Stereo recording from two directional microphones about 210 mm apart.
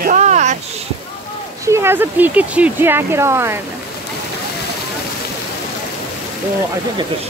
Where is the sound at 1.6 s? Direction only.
10° right (ahead or behind).